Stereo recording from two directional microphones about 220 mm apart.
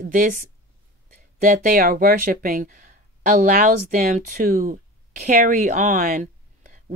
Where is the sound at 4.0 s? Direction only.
40° right (ahead or behind).